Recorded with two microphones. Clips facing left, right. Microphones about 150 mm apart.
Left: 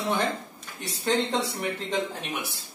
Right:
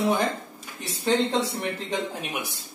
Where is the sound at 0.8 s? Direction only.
Centre (ahead or behind).